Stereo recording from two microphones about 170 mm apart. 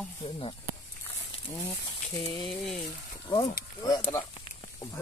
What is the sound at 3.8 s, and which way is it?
Speech, 20° left (ahead or behind).